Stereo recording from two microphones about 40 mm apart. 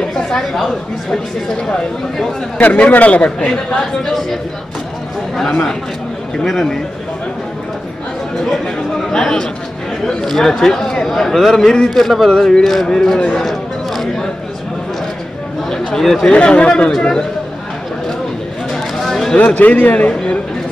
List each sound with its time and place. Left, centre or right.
0.4 s a man's voice: centre
2.6 s a man's voice: left
3.4 s a man's voice: centre
5.5 s a man's voice: centre
9.1 s a man's voice: centre
11.9 s a man's voice: centre
12.3 s a man's voice: centre
13.4 s a sound: centre
15.7 s speech: centre
16.3 s speech: left
19.0 s a sound: centre
19.3 s a man's voice: left